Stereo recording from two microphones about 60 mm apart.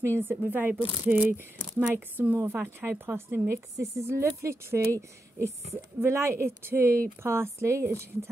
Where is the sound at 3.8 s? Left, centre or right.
Right.